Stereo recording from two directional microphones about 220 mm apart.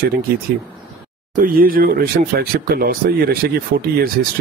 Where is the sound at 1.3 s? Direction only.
40° right (ahead or behind).